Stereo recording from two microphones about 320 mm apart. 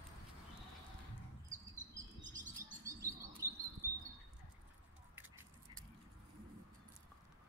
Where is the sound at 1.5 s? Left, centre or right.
Right.